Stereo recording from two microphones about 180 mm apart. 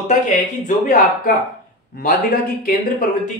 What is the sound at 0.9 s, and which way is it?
Speech, 50° left (ahead or behind).